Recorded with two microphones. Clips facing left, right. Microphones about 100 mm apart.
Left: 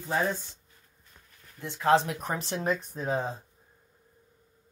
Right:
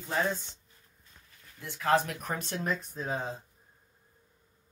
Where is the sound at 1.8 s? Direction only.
20° left (ahead or behind).